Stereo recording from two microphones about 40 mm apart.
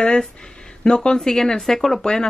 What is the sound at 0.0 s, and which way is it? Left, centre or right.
Speech, left.